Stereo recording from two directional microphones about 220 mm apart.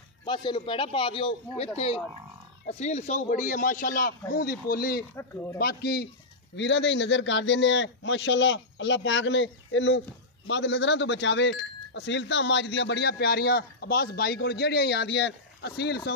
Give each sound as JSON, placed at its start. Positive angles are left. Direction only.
{"t": 0.2, "sound": "a man's voice", "side_deg": 20}